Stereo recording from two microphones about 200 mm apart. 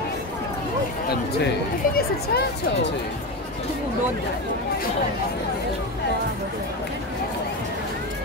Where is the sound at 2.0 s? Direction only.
55° left (ahead or behind).